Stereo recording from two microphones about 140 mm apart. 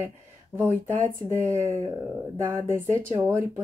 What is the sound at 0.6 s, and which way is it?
Speech, 20° right (ahead or behind).